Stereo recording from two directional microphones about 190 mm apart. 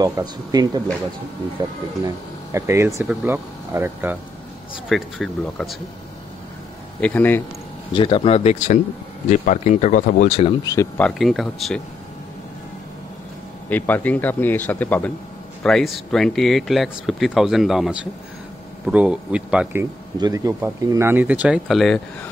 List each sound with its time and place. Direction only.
0.0 s speech: 20° right (ahead or behind)
4.8 s speech: centre (ahead or behind)
7.0 s speech: 10° left (ahead or behind)
7.9 s speech: 25° left (ahead or behind)
10.6 s speech: 20° left (ahead or behind)
11.0 s speech: centre (ahead or behind)
13.7 s speech: 10° left (ahead or behind)